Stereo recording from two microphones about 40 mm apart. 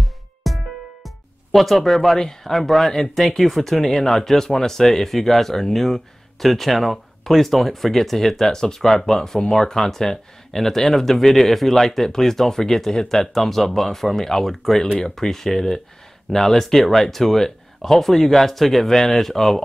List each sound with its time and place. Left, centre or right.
0.0 s music: centre
2.1 s speech: centre
2.5 s speech: centre
14.8 s speech: centre